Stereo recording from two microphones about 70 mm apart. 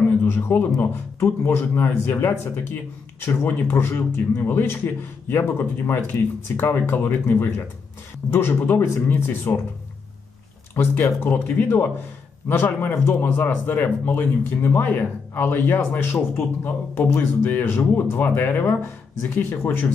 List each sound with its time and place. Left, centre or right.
0.2 s a man's voice: left
10.7 s speech: left